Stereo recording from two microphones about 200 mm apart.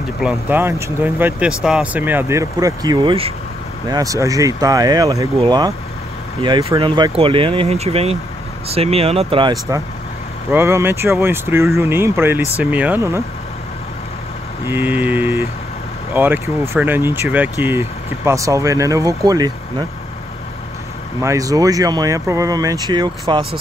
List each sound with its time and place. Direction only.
0.2 s speech: 10° right (ahead or behind)
14.7 s speech: 10° right (ahead or behind)
21.2 s speech: 15° right (ahead or behind)